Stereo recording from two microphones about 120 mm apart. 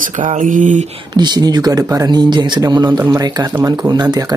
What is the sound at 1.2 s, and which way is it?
Speech, 35° right (ahead or behind).